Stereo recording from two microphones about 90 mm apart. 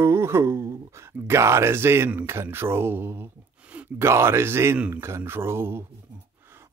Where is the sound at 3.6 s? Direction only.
15° right (ahead or behind).